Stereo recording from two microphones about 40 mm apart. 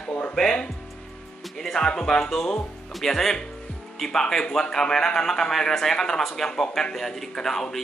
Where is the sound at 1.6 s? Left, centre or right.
Centre.